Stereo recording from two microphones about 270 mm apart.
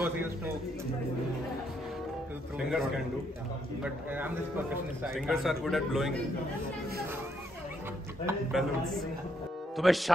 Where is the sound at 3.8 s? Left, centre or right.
Centre.